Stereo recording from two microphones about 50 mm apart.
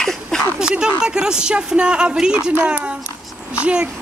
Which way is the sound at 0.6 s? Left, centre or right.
Centre.